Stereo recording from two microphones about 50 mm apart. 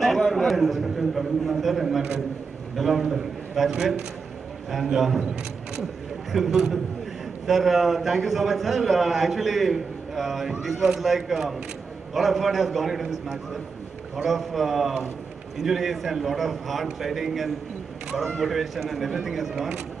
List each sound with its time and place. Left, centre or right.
0.0 s a sound: centre
0.5 s a man's voice: centre
4.9 s a man's voice: centre
6.3 s a man's voice: centre